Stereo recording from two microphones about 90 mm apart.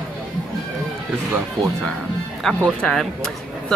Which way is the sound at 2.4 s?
5° left (ahead or behind).